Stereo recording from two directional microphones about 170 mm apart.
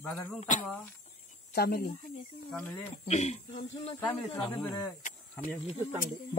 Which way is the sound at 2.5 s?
10° left (ahead or behind).